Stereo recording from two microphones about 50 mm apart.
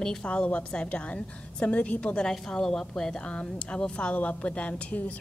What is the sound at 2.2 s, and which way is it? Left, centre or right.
Speech, centre.